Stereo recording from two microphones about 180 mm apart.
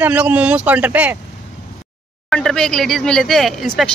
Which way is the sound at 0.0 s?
10° right (ahead or behind).